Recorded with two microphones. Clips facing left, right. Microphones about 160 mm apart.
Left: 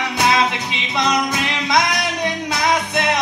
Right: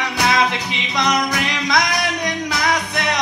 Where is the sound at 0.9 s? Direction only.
25° left (ahead or behind).